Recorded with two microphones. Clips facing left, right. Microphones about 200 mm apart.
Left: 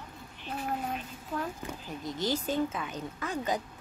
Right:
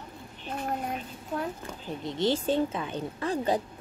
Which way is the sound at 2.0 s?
25° right (ahead or behind).